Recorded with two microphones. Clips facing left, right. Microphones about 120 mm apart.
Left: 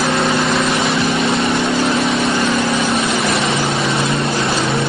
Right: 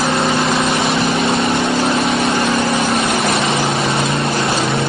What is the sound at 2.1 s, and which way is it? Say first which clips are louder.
Vehicle: even; 25° right (ahead or behind).